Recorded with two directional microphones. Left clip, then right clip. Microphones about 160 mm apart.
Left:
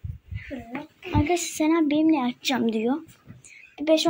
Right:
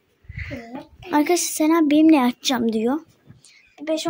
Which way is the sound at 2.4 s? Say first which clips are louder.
Right 3 dB; 30° right (ahead or behind).